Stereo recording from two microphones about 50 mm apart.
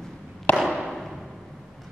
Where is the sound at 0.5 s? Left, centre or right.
Centre.